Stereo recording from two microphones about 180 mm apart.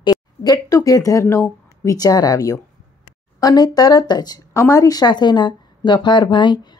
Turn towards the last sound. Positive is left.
turn(degrees=25)  # may be behind; listen again after turning